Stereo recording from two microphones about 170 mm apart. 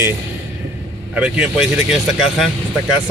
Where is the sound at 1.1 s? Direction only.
5° right (ahead or behind).